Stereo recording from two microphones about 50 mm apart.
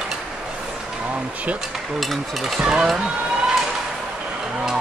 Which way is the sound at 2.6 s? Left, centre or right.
Centre.